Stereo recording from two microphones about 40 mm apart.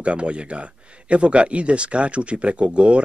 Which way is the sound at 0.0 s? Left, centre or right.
Right.